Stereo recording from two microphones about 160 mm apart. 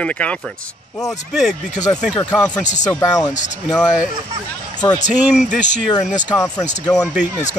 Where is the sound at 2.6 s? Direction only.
50° left (ahead or behind).